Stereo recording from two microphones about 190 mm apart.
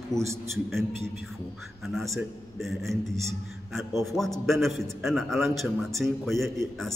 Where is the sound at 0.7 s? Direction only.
Centre (ahead or behind).